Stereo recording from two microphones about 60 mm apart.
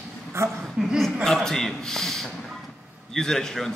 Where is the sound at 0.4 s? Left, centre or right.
Right.